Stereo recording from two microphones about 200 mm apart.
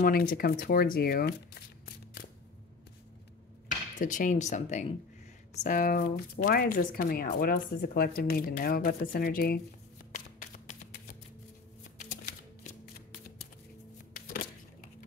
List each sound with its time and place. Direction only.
0.0 s speech: 45° left (ahead or behind)
4.0 s speech: 40° left (ahead or behind)
10.1 s shuffling cards: 40° left (ahead or behind)
11.8 s typewriter: 40° left (ahead or behind)
14.1 s music: 45° left (ahead or behind)